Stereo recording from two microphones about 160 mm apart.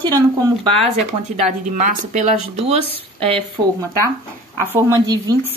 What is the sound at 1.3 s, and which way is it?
Speech, 50° right (ahead or behind).